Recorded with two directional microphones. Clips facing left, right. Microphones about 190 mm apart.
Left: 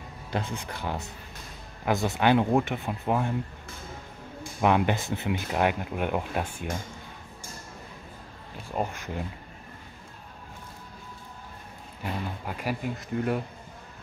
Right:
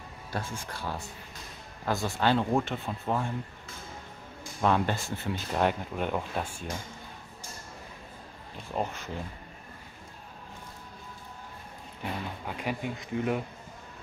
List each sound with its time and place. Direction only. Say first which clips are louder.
0.3 s speech: left 4 dB; 20° left (ahead or behind)
4.6 s speech: left 3 dB; 15° left (ahead or behind)
8.7 s speech: left 2 dB; 10° left (ahead or behind)
12.4 s speech: left 1 dB; 5° left (ahead or behind)